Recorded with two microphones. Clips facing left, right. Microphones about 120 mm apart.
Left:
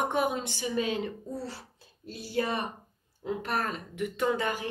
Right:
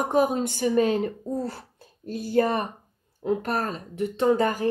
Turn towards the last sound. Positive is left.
turn(degrees=-40)  # may be behind; listen again after turning